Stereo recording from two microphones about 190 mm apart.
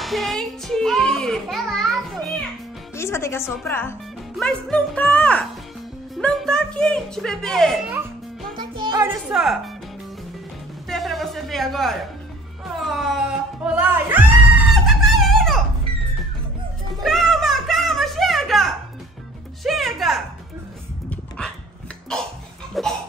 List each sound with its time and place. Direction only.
0.0 s music: centre (ahead or behind)
3.0 s speech: 15° left (ahead or behind)
8.5 s music: 25° right (ahead or behind)
9.0 s speech: centre (ahead or behind)
10.9 s a sound: centre (ahead or behind)
12.7 s music: centre (ahead or behind)
17.0 s a sound: centre (ahead or behind)
19.6 s music: centre (ahead or behind)
22.8 s a sound: centre (ahead or behind)